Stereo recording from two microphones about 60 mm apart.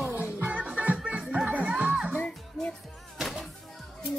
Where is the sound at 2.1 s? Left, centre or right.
Centre.